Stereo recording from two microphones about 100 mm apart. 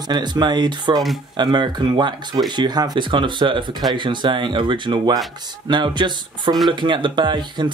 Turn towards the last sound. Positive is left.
turn(degrees=-50)  # may be behind; listen again after turning